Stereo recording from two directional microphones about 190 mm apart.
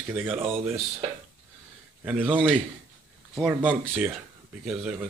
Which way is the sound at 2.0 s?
5° right (ahead or behind).